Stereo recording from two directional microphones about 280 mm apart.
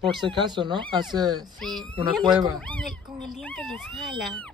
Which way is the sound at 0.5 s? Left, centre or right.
Centre.